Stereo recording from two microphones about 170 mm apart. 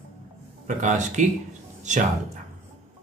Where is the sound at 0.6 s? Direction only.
45° right (ahead or behind).